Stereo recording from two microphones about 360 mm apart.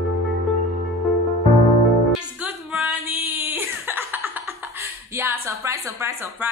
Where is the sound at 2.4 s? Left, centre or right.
Centre.